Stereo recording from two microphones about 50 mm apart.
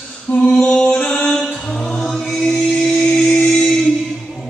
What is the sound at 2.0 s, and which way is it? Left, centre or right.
Chant, centre.